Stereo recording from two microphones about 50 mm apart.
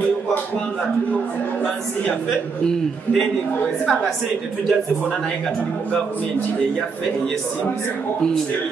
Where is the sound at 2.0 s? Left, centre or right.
Centre.